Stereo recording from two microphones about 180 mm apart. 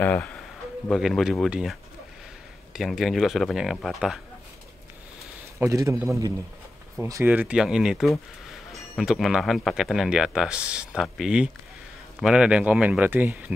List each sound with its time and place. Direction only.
0.0 s speech: 10° left (ahead or behind)
5.6 s speech: 15° right (ahead or behind)